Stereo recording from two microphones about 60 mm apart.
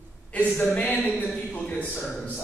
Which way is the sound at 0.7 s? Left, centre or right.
Left.